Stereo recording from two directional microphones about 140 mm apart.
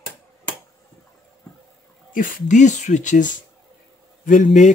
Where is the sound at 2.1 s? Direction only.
70° left (ahead or behind).